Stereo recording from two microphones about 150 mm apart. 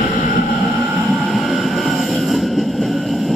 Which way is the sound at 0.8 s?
10° right (ahead or behind).